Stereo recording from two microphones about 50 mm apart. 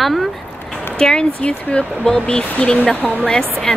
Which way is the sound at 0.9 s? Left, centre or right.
Centre.